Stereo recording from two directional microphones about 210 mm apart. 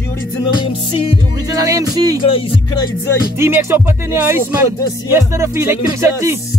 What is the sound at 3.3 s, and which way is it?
Speech, 10° right (ahead or behind).